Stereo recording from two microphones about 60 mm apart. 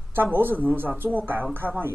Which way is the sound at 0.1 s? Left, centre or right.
Right.